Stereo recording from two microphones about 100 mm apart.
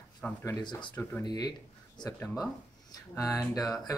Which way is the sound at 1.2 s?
40° left (ahead or behind).